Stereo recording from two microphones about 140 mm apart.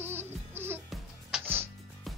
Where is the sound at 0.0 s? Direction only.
15° right (ahead or behind).